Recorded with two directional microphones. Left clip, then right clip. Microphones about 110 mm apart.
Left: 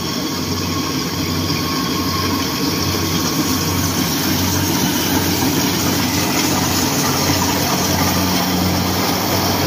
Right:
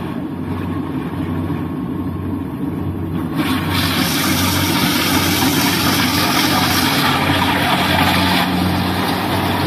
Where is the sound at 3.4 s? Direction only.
20° right (ahead or behind).